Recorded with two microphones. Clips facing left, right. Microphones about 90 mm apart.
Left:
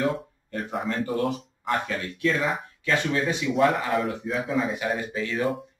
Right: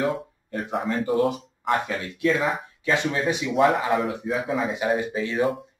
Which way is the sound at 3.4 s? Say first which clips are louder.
Right 3 dB; centre (ahead or behind).